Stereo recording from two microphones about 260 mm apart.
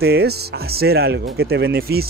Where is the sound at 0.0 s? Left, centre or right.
Right.